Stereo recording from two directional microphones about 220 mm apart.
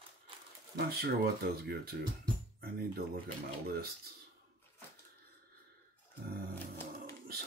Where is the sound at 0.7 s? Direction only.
45° right (ahead or behind).